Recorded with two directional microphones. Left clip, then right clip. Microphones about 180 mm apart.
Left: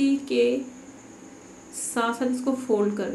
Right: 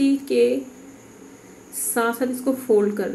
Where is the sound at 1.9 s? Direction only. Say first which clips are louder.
Right 3 dB; 20° right (ahead or behind).